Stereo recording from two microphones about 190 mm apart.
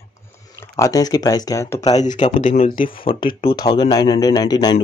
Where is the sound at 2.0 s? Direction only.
40° left (ahead or behind).